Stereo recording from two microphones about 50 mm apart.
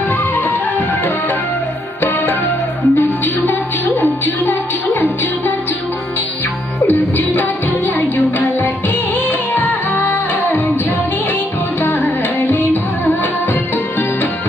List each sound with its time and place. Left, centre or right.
0.1 s music: left
6.9 s music: left
11.8 s music: left